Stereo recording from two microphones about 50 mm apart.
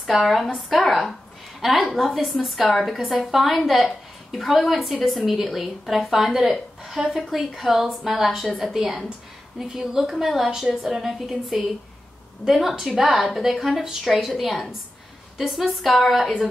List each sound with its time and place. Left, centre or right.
0.2 s a woman's voice: centre